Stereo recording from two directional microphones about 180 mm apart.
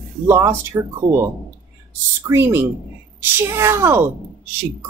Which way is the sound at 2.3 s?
15° right (ahead or behind).